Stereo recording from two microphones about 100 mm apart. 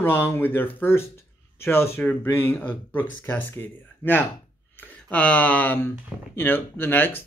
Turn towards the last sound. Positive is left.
turn(degrees=20)  # may be behind; listen again after turning